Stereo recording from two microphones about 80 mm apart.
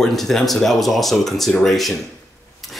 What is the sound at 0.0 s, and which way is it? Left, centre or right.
Speech, centre.